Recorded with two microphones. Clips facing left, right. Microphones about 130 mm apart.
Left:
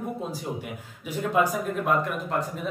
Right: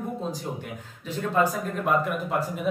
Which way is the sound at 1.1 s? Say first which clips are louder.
Even; 10° left (ahead or behind).